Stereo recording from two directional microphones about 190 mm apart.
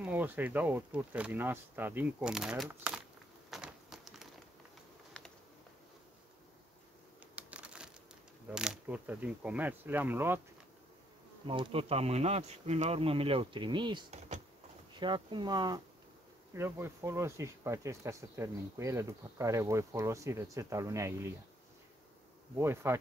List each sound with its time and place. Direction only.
0.0 s speech: 10° right (ahead or behind)
3.4 s a sound: centre (ahead or behind)
7.3 s a sound: 5° right (ahead or behind)
8.5 s speech: 5° right (ahead or behind)
11.4 s speech: 25° right (ahead or behind)
22.6 s speech: 15° right (ahead or behind)